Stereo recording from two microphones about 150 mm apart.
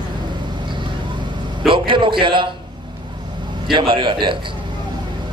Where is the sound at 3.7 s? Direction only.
35° right (ahead or behind).